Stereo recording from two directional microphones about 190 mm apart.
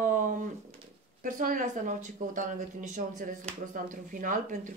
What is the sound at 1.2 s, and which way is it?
Speech, 45° right (ahead or behind).